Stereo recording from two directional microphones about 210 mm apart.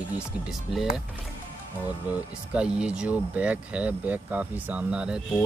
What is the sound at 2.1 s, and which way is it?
Speech, 5° right (ahead or behind).